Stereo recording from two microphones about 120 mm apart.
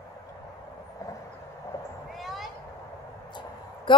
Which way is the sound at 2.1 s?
Centre (ahead or behind).